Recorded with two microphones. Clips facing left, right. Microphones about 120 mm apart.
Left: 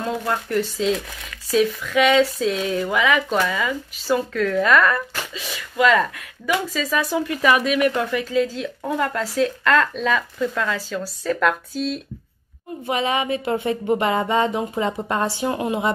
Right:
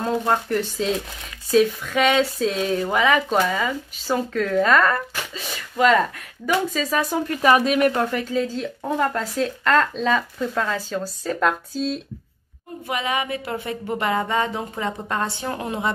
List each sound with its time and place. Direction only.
0.0 s a woman's voice: 35° right (ahead or behind)
12.8 s a sound: 25° left (ahead or behind)
15.5 s a woman's voice: 15° left (ahead or behind)